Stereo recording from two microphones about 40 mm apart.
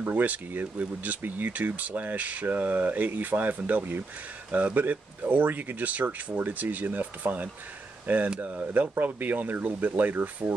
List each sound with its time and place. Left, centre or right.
0.1 s speech: right
4.5 s speech: right
8.9 s speech: right